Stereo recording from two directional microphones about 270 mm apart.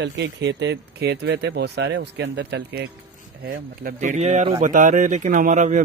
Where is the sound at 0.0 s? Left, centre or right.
Right.